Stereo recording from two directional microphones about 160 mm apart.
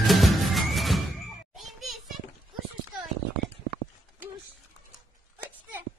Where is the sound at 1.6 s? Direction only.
Centre (ahead or behind).